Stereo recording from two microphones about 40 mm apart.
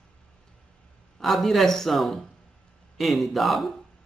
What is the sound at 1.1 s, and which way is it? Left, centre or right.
Speech, centre.